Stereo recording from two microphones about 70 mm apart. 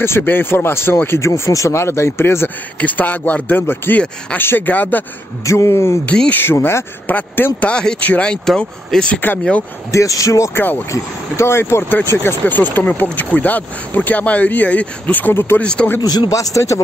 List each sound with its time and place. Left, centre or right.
0.2 s speech: left
2.8 s speech: left
5.4 s speech: left
7.6 s speech: centre
9.8 s a man's voice: left
15.6 s speech: centre
16.0 s speech: left
16.3 s a man's voice: left